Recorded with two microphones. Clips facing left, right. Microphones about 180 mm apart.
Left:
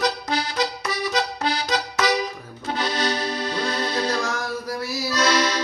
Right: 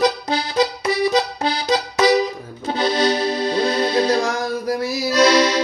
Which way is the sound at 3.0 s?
10° right (ahead or behind).